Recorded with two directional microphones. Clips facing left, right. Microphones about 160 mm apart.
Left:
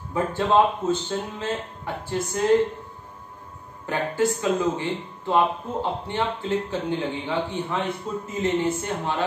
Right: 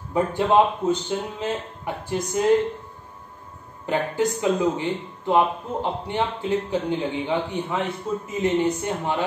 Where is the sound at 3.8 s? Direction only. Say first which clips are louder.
Right 1 dB; 20° right (ahead or behind).